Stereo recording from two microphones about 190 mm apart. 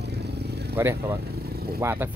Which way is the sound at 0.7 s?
15° right (ahead or behind).